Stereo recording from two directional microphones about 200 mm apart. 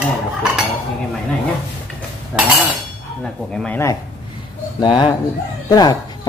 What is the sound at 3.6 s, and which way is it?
Speech, 10° left (ahead or behind).